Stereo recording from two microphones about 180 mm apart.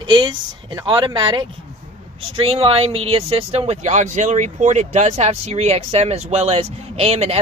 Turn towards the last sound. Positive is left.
turn(degrees=-35)  # may be behind; listen again after turning